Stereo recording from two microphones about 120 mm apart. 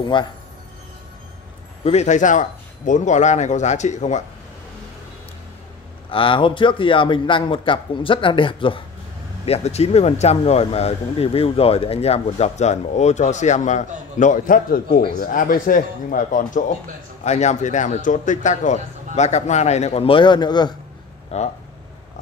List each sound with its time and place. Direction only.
0.0 s speech: 40° left (ahead or behind)
1.9 s speech: 75° left (ahead or behind)
6.0 s a man's voice: 45° left (ahead or behind)
9.5 s a man's voice: 65° left (ahead or behind); by 16.7 s 90° left
17.2 s a man's voice: 70° left (ahead or behind); by 18.8 s 90° left
19.1 s speech: 70° left (ahead or behind); by 20.7 s 35° left (ahead or behind)
21.3 s speech: 60° left (ahead or behind)